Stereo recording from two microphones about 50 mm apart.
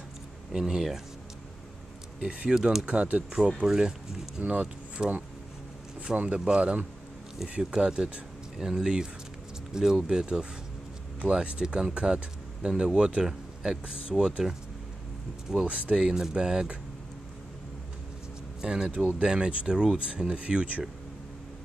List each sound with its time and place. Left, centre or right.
0.5 s speech: centre
2.1 s speech: right
3.6 s speech: centre
4.4 s speech: right
6.1 s speech: right
15.9 s speech: right
18.6 s speech: centre
18.9 s speech: right
20.3 s speech: right